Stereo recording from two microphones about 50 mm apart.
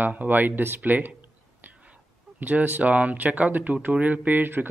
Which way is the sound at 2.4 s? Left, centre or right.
Right.